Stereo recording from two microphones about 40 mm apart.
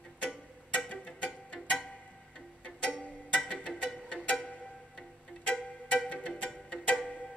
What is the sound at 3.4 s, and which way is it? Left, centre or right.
Music, left.